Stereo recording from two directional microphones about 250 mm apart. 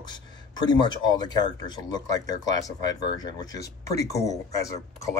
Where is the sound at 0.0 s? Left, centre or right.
Centre.